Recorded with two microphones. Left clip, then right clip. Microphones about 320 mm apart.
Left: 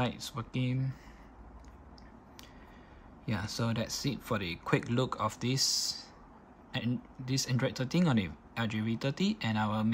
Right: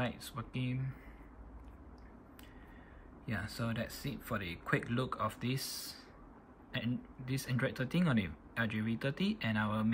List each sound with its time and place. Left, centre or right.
0.0 s speech: centre
3.3 s speech: centre
6.7 s speech: centre